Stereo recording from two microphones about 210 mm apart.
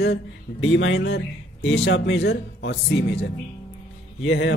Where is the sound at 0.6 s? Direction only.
65° left (ahead or behind).